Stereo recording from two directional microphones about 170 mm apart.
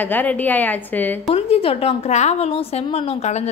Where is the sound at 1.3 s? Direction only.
35° left (ahead or behind).